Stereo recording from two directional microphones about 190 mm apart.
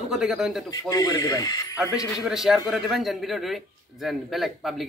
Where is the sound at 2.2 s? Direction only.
Centre (ahead or behind).